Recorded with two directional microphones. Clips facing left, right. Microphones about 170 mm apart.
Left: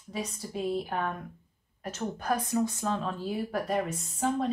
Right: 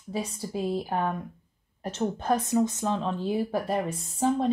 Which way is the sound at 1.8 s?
30° right (ahead or behind).